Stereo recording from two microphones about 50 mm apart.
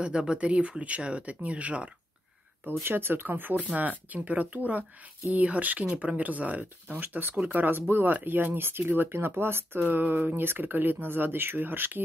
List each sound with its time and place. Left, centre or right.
0.0 s speech: centre
2.9 s speech: right